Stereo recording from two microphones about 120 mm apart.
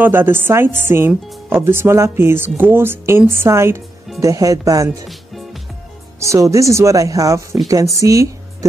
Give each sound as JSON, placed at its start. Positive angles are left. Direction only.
{"t": 0.0, "sound": "speech", "side_deg": -20}
{"t": 6.1, "sound": "speech", "side_deg": -25}